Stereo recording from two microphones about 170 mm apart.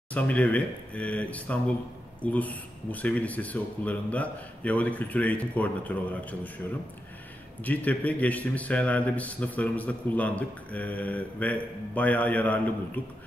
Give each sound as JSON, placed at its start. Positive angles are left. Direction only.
{"t": 0.1, "sound": "a man's voice", "side_deg": 10}
{"t": 7.6, "sound": "a man's voice", "side_deg": 10}